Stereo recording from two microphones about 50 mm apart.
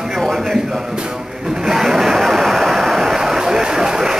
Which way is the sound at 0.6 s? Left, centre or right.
Centre.